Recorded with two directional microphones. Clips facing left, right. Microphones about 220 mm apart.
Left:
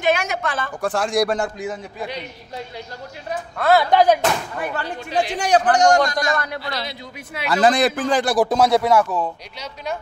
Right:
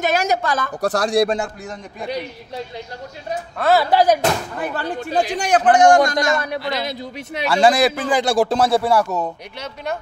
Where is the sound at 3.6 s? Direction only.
5° right (ahead or behind).